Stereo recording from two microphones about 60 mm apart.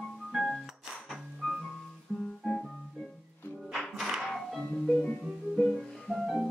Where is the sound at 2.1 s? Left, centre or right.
Left.